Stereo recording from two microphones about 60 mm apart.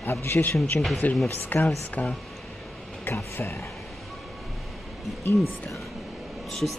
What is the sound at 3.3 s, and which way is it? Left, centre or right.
Speech, left.